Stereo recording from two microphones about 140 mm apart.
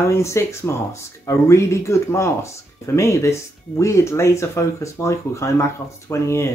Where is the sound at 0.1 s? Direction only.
20° left (ahead or behind).